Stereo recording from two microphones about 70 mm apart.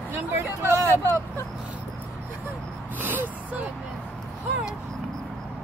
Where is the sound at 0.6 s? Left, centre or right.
Right.